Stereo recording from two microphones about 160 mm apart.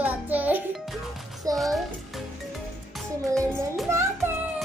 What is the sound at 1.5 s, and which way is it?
Speech, centre (ahead or behind).